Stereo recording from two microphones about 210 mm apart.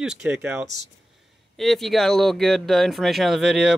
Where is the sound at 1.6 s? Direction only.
Centre (ahead or behind).